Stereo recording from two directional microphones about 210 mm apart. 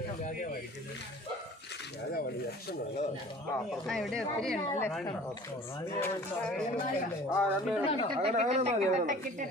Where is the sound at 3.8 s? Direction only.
Centre (ahead or behind).